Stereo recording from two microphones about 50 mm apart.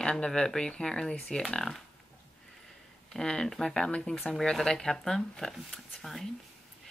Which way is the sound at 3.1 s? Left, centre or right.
Centre.